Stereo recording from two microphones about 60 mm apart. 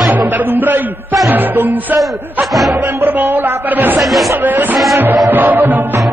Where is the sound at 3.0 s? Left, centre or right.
Right.